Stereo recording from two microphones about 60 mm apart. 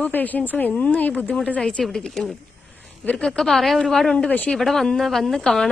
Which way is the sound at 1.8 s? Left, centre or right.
Centre.